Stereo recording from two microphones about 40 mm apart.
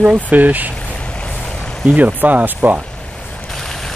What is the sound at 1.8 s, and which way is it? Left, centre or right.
Speech, right.